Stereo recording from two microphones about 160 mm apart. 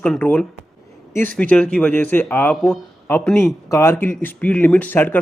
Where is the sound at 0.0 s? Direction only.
10° left (ahead or behind).